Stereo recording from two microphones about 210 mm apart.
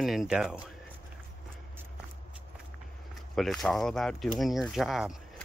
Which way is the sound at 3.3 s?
Centre (ahead or behind).